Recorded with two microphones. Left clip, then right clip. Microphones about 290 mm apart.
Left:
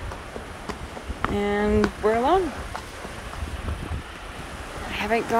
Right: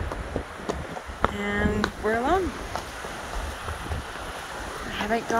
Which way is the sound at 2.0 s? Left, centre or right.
Centre.